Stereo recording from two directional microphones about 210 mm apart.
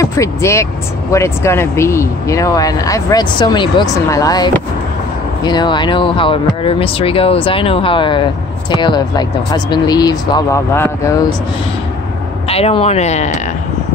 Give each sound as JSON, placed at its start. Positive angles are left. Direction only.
{"t": 0.0, "sound": "speech", "side_deg": 15}
{"t": 12.4, "sound": "speech", "side_deg": 30}